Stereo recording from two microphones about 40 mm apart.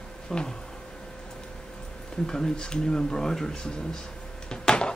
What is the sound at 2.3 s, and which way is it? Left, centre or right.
Speech, centre.